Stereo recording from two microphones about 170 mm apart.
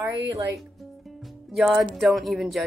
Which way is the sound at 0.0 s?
20° right (ahead or behind).